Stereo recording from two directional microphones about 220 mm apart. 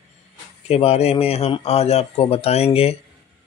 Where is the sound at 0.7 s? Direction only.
25° left (ahead or behind).